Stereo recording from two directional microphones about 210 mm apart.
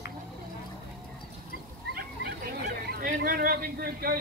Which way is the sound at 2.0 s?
45° right (ahead or behind).